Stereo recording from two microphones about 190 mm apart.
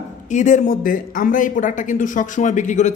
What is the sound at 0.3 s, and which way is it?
A man's voice, 40° left (ahead or behind).